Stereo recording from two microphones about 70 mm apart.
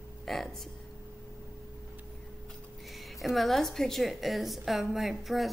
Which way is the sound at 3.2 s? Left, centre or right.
Centre.